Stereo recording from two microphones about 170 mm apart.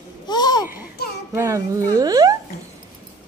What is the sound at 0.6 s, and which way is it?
Babbling, 10° right (ahead or behind).